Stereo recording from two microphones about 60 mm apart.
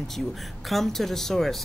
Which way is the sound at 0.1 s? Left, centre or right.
Centre.